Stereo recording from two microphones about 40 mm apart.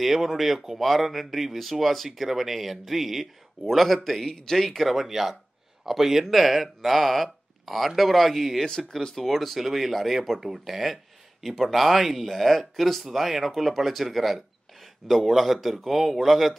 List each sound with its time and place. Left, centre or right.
0.0 s speech: centre
8.6 s speech: centre
9.1 s speech: centre